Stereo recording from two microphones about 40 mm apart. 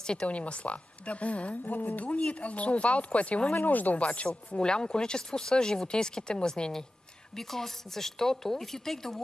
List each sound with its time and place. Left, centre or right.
0.0 s speech: centre
0.3 s speech: left
1.7 s speech: left
2.1 s speech: left
3.5 s speech: left
4.0 s speech: left
4.5 s a woman's voice: left